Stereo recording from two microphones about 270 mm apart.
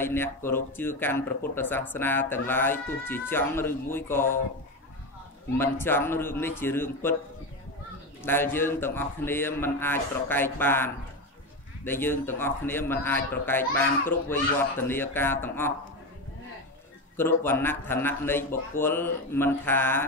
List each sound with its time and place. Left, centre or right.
0.0 s a man's voice: centre
5.6 s a man's voice: centre
8.2 s a man's voice: centre
17.2 s a man's voice: centre